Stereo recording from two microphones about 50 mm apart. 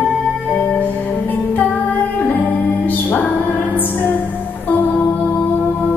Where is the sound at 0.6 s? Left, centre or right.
Left.